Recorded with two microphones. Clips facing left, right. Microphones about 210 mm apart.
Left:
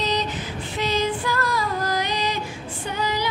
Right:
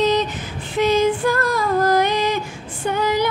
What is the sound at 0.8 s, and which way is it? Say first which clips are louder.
Female singing: right 8 dB; 50° right (ahead or behind).